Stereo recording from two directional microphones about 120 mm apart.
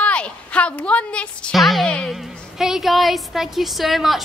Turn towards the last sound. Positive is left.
turn(degrees=0)  # may be behind; listen again after turning